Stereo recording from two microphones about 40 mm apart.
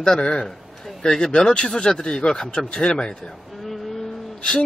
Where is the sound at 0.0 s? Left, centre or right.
Left.